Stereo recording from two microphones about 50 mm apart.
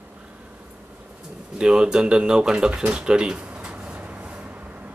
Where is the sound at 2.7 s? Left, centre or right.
Right.